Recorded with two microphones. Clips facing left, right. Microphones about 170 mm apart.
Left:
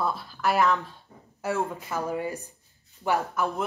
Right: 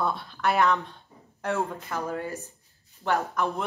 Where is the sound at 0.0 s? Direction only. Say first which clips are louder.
Even; centre (ahead or behind).